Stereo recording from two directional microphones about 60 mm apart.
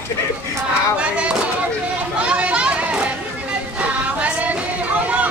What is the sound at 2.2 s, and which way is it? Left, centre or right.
Chatter, centre.